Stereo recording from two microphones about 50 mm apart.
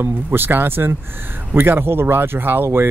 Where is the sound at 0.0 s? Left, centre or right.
Right.